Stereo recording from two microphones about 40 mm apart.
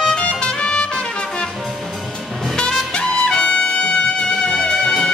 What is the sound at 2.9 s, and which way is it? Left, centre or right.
Trumpet, left.